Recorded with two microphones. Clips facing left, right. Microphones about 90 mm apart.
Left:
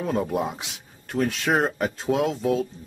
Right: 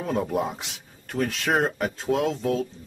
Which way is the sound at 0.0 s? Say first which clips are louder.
Left 1 dB; centre (ahead or behind).